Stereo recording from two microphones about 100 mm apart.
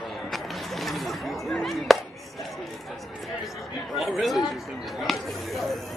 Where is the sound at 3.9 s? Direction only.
Centre (ahead or behind).